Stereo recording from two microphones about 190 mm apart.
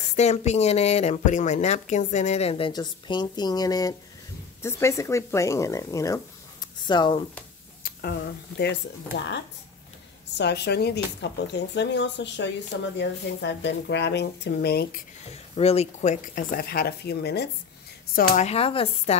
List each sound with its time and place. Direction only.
0.1 s speech: 35° left (ahead or behind)
7.8 s speech: 55° left (ahead or behind)
15.5 s speech: 30° left (ahead or behind); by 17.5 s 60° left (ahead or behind)
18.1 s speech: 40° left (ahead or behind)